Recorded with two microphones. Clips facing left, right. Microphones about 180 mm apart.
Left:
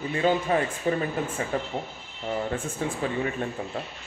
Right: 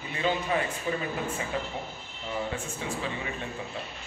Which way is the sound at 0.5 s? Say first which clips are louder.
Left 4 dB; 45° left (ahead or behind).